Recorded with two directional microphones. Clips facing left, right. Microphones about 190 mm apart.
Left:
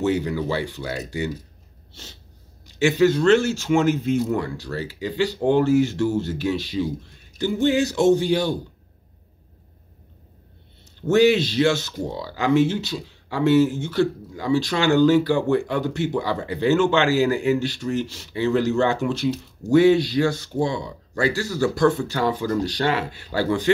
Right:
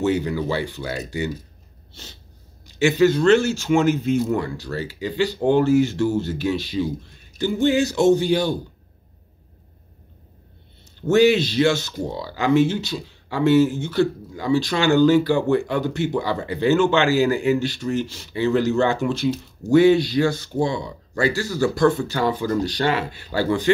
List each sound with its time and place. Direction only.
0.0 s speech: centre (ahead or behind)
2.8 s speech: centre (ahead or behind)
11.1 s speech: centre (ahead or behind)